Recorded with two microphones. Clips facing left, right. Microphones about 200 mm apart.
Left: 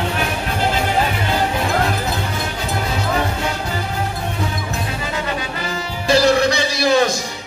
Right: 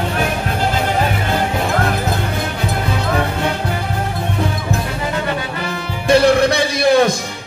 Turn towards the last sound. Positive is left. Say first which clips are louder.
# right 3 dB
turn(degrees=-55)  # may be behind; listen again after turning